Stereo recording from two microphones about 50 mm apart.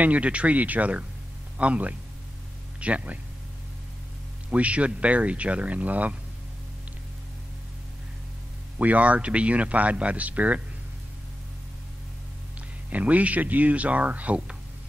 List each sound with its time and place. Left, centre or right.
0.0 s speech: right
4.5 s speech: right
8.7 s speech: right
12.9 s speech: right